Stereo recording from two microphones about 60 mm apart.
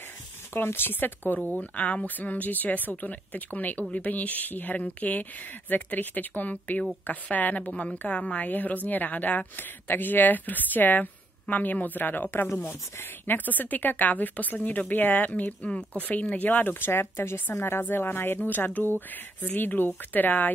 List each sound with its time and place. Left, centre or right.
0.6 s a woman's voice: left
7.7 s a woman's voice: centre